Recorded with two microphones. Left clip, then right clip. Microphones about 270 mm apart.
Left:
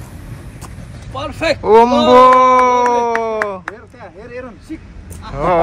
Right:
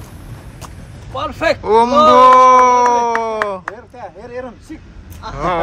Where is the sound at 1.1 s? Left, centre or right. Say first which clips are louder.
Right 1 dB; right.